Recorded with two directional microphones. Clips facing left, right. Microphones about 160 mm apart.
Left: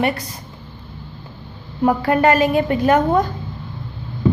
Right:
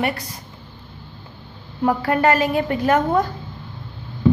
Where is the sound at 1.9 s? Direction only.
20° left (ahead or behind).